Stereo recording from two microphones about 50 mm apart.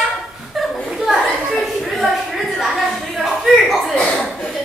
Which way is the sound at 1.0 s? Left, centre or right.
Centre.